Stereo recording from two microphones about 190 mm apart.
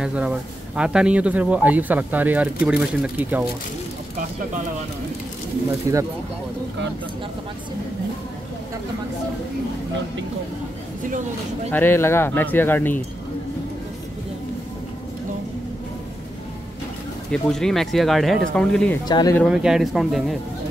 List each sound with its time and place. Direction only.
0.0 s speech: 5° right (ahead or behind)
5.9 s speech: 15° right (ahead or behind)
11.7 s speech: 10° left (ahead or behind)
17.3 s speech: 5° left (ahead or behind)
19.0 s speech: 20° left (ahead or behind)
19.3 s speech: centre (ahead or behind)